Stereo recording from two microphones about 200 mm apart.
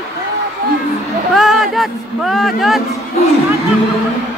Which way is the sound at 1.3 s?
Centre (ahead or behind).